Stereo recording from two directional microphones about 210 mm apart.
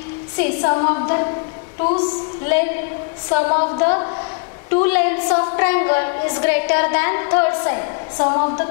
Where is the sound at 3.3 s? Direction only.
30° left (ahead or behind).